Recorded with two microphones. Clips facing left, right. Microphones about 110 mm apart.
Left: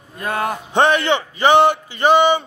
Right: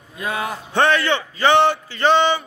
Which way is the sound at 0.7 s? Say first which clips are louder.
Left 2 dB; 20° left (ahead or behind).